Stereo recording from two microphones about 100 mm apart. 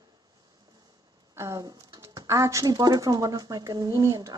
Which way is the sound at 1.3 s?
35° right (ahead or behind).